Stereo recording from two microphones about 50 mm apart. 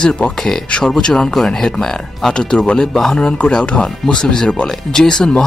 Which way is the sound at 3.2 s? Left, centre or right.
Left.